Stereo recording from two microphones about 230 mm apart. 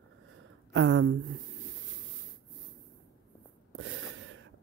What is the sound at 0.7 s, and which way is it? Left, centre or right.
Speech, right.